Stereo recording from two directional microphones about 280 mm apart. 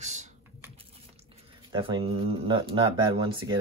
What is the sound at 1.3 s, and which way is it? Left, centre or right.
Speech, centre.